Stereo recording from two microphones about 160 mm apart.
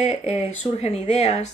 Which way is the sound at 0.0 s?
40° left (ahead or behind).